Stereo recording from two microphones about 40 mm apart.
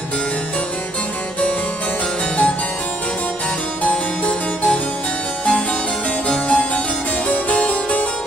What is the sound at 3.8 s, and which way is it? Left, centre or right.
Harpsichord, left.